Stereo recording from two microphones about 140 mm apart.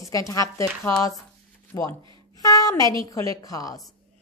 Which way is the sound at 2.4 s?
25° left (ahead or behind).